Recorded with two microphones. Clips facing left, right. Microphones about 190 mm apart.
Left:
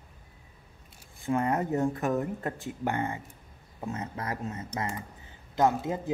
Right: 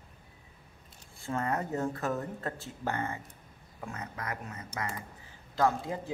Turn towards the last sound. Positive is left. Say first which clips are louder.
# left 3 dB
turn(degrees=20)  # may be behind; listen again after turning